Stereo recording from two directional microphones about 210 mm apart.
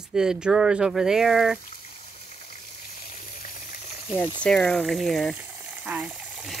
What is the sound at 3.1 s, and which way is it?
Frying, 40° left (ahead or behind).